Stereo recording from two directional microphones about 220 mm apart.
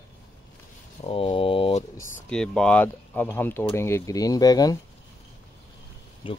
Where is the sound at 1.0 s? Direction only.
25° left (ahead or behind).